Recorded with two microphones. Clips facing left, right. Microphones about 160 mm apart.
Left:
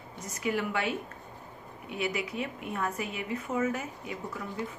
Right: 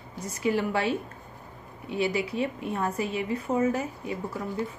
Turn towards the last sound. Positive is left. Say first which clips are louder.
# right 5 dB
turn(degrees=-30)  # may be behind; listen again after turning